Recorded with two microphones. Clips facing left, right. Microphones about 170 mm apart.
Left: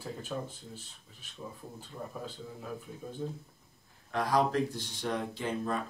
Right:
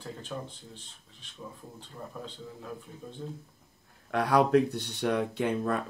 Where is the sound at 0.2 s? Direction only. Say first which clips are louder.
Left 1 dB; 5° left (ahead or behind).